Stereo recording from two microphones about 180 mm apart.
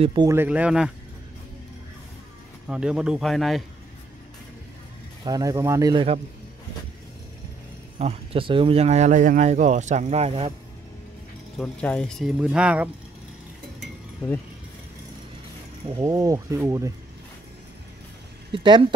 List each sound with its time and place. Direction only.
0.0 s speech: 25° right (ahead or behind)
0.3 s speech: 10° right (ahead or behind)
2.7 s speech: 5° right (ahead or behind)
5.2 s speech: 20° right (ahead or behind)
8.0 s speech: 30° right (ahead or behind)
11.5 s speech: 5° left (ahead or behind)
15.9 s speech: 20° right (ahead or behind)
18.5 s speech: 30° right (ahead or behind)